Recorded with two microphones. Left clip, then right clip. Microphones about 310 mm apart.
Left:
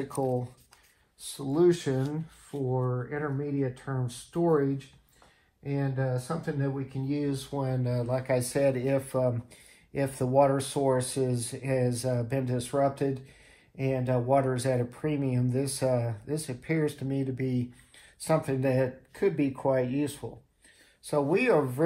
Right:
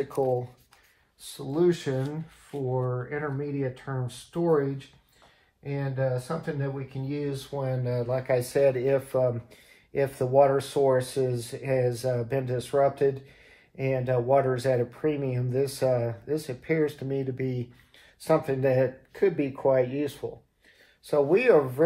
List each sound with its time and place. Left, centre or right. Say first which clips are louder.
1.2 s speech: even; centre